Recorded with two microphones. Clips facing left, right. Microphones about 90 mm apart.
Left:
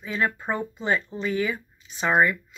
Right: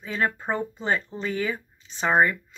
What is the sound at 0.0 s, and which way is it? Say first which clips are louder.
Speech: even; 35° right (ahead or behind).